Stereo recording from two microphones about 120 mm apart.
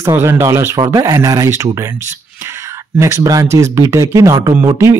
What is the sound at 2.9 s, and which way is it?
Speech, 25° right (ahead or behind).